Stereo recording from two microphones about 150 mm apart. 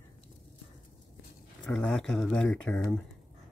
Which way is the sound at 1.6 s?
5° left (ahead or behind).